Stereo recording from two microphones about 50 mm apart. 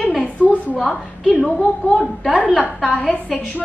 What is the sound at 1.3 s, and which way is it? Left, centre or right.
A woman's voice, centre.